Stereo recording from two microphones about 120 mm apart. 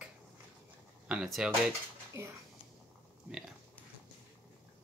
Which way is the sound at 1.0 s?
5° right (ahead or behind).